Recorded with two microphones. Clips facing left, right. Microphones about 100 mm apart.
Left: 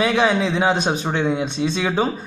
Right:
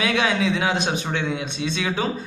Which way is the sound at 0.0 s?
35° left (ahead or behind).